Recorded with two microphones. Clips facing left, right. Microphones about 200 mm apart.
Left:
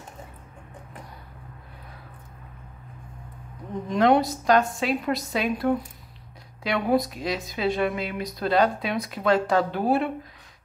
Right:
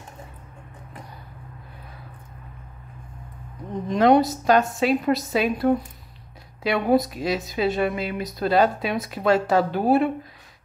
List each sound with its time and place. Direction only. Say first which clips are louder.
3.9 s a woman's voice: right 3 dB; centre (ahead or behind)